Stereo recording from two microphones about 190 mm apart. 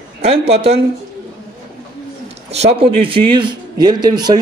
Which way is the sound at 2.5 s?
30° right (ahead or behind).